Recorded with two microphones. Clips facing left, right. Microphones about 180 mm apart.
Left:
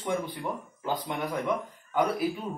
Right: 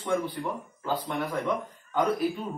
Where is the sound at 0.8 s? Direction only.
15° left (ahead or behind).